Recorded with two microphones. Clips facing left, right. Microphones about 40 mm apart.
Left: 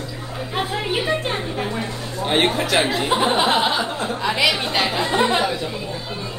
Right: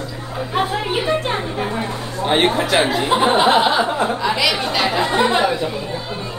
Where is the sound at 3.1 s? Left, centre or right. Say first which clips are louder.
Right 4 dB; centre.